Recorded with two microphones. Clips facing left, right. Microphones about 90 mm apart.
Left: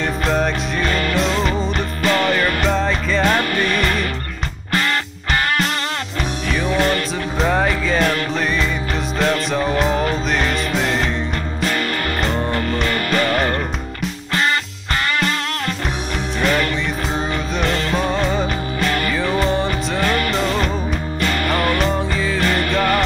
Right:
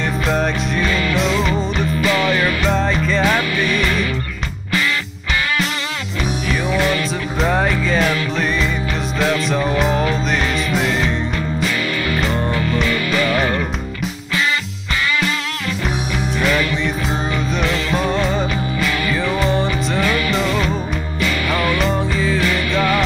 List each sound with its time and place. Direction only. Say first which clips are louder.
0.3 s music: right 1 dB; centre (ahead or behind)
2.0 s music: left 1 dB; 45° left (ahead or behind)
2.6 s music: right 1 dB; centre (ahead or behind)
3.3 s music: even; 45° left (ahead or behind)
6.5 s music: left 1 dB; centre (ahead or behind)
9.2 s music: right 1 dB; centre (ahead or behind)
12.3 s music: right 1 dB; centre (ahead or behind)
12.8 s music: even; 45° left (ahead or behind)
15.1 s music: even; 45° left (ahead or behind)
16.3 s music: even; centre (ahead or behind)
17.9 s music: right 2 dB; centre (ahead or behind)
20.0 s music: even; 45° left (ahead or behind)
21.8 s music: right 1 dB; centre (ahead or behind)
22.4 s music: even; 45° left (ahead or behind)